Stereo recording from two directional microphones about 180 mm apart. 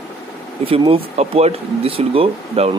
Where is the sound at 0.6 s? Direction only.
30° right (ahead or behind).